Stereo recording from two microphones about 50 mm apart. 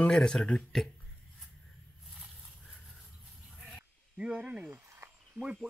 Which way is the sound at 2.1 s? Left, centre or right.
Centre.